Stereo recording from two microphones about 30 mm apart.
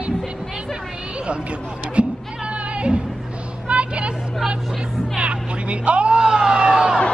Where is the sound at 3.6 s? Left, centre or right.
Right.